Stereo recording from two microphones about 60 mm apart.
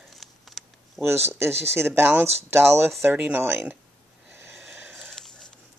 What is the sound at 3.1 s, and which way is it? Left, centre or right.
Speech, right.